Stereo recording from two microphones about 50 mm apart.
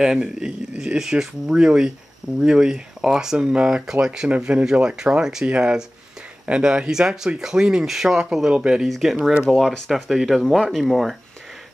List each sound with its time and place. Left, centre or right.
0.0 s speech: centre
4.4 s speech: right
8.8 s speech: centre